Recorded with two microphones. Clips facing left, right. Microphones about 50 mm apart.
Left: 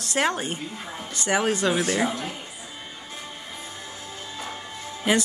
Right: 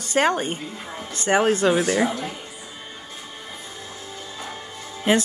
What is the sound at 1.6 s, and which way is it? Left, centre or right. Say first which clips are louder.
Speech: right 4 dB; centre.